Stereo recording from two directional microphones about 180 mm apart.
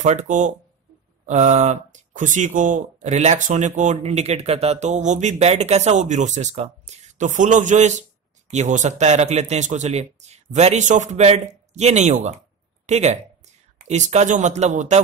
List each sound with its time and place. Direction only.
0.0 s speech: 40° right (ahead or behind)